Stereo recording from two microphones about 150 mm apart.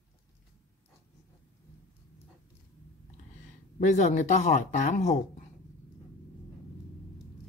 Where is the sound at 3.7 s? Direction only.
55° left (ahead or behind).